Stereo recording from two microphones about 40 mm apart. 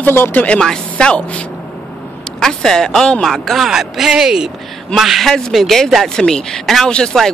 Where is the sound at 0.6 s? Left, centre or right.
Centre.